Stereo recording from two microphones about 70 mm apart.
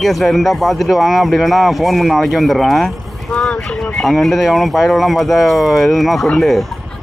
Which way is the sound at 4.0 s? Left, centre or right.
Centre.